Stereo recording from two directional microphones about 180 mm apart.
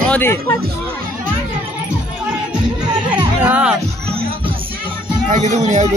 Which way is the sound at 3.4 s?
5° right (ahead or behind).